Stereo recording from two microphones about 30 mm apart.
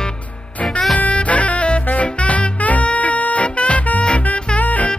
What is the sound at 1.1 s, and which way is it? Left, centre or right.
Music, left.